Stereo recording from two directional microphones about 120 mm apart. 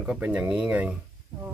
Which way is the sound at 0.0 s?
10° right (ahead or behind).